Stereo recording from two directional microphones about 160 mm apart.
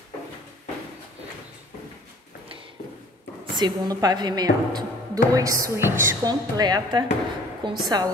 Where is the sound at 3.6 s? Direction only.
25° right (ahead or behind).